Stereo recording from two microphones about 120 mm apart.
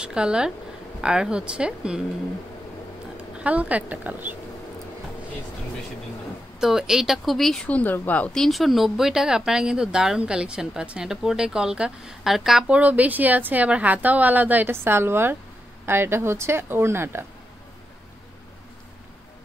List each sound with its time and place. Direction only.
0.0 s speech: 5° right (ahead or behind)
3.3 s speech: 10° right (ahead or behind)
6.6 s speech: 5° right (ahead or behind); by 8.5 s 10° left (ahead or behind)
8.5 s a woman's voice: centre (ahead or behind); by 17.2 s 20° right (ahead or behind)